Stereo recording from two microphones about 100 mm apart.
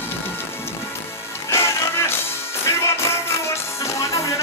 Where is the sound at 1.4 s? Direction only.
25° left (ahead or behind).